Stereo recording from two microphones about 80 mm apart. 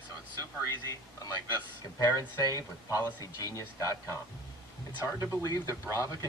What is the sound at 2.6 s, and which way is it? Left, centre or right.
Speech, left.